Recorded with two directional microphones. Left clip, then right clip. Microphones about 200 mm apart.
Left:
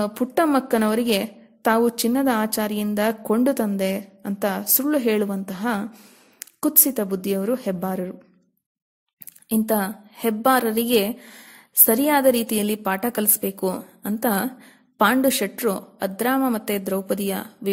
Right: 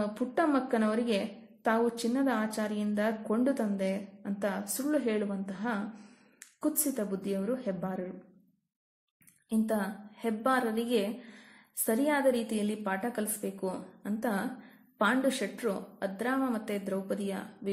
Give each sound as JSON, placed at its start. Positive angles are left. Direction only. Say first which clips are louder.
{"t": 0.0, "sound": "a woman's voice", "louder": "left 9 dB", "side_deg": 50}
{"t": 9.5, "sound": "a woman's voice", "louder": "left 9 dB", "side_deg": 45}